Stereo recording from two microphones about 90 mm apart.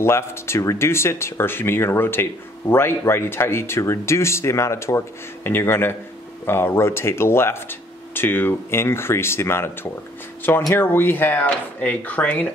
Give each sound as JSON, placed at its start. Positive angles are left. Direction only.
{"t": 0.0, "sound": "speech", "side_deg": 30}
{"t": 10.7, "sound": "speech", "side_deg": 25}